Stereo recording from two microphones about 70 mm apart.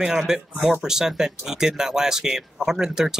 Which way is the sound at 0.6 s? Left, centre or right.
Centre.